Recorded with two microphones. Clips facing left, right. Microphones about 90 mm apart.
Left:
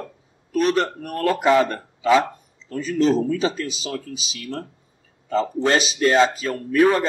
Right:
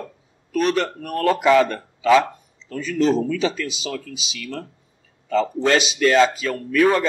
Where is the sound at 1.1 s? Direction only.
40° right (ahead or behind).